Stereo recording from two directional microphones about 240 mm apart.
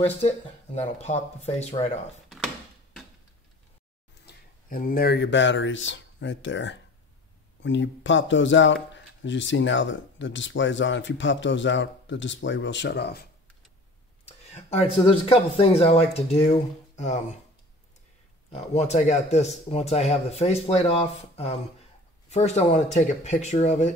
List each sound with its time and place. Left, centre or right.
0.7 s speech: left
4.3 s speech: left
14.5 s speech: left
18.5 s speech: left